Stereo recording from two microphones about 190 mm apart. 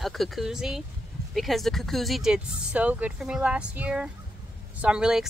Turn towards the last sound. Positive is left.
turn(degrees=-5)  # may be behind; listen again after turning